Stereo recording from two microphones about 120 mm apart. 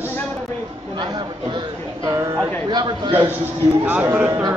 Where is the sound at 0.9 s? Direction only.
35° right (ahead or behind).